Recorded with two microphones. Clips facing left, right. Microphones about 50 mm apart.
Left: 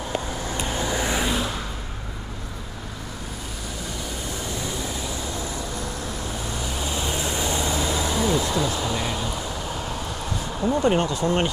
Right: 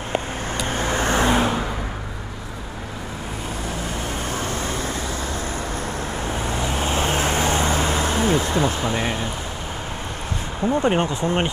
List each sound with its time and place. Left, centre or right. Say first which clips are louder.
0.1 s vehicle: right 4 dB; right
4.3 s vehicle: right 3 dB; right
10.7 s speech: right 1 dB; right